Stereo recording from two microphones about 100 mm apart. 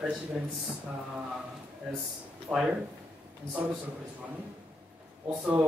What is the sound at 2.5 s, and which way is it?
Speech, 15° right (ahead or behind).